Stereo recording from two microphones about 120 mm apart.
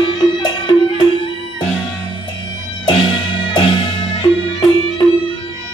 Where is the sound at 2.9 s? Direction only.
45° left (ahead or behind).